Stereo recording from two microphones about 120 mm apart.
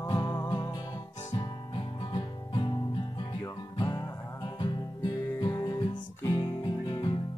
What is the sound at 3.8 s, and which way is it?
Music, 35° left (ahead or behind).